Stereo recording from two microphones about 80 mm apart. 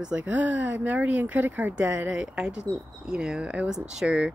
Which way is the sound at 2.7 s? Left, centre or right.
Right.